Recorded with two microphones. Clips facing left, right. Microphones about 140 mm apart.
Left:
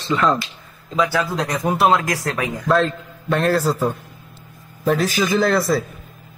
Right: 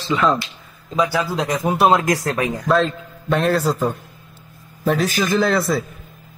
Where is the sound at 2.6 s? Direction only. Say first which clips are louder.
Left 1 dB; centre (ahead or behind).